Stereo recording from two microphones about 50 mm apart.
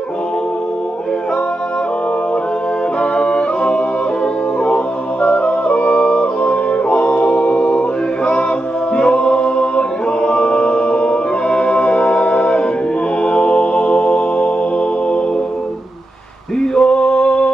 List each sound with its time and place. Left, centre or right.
3.0 s a capella: centre
4.6 s music: left
8.9 s music: centre
13.2 s mantra: centre
16.7 s male singing: centre